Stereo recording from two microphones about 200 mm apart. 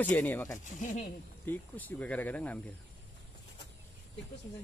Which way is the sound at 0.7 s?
40° left (ahead or behind).